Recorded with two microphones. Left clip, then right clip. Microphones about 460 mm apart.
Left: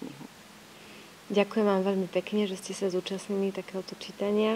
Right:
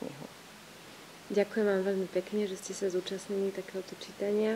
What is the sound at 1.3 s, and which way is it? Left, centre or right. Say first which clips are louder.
Speech: left 3 dB; left.